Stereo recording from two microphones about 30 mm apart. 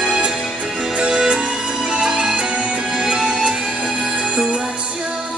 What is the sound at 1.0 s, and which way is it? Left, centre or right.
Music, right.